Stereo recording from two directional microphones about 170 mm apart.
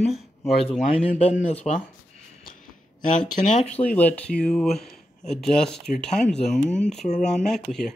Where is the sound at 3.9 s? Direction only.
10° left (ahead or behind).